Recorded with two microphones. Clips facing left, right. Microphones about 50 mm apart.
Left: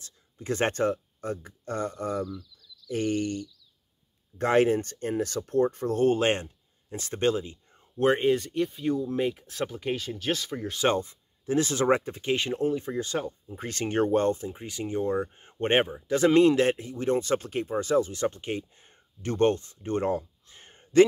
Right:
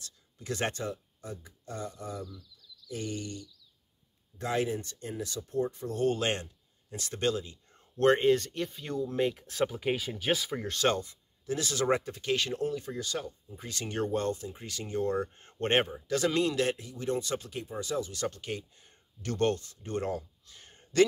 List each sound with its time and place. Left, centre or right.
0.0 s speech: left
6.0 s speech: left
7.7 s speech: centre
10.7 s speech: centre
11.0 s speech: left; by 16.0 s centre
16.1 s speech: left